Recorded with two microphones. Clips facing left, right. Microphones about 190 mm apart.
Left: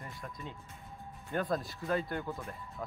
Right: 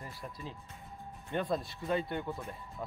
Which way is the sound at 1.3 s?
Centre (ahead or behind).